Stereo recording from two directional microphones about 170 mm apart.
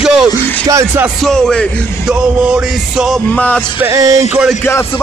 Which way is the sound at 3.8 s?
20° right (ahead or behind).